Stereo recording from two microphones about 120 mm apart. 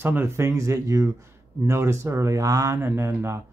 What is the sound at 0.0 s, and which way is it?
Speech, 15° right (ahead or behind).